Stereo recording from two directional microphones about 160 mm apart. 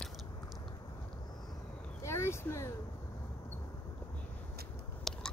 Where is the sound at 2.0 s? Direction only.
15° left (ahead or behind).